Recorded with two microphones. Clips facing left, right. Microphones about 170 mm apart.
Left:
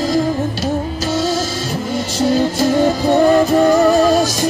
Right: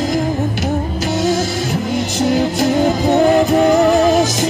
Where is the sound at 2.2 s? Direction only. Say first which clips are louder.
Left 1 dB; 20° right (ahead or behind).